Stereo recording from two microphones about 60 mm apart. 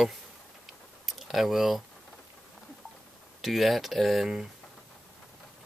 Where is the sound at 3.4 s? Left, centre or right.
Centre.